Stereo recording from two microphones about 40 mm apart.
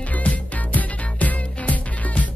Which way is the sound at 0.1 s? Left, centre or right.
Left.